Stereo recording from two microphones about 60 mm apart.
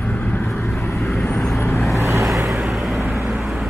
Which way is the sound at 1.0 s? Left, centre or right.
Centre.